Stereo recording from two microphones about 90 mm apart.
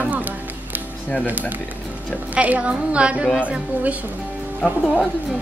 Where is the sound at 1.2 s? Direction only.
20° right (ahead or behind).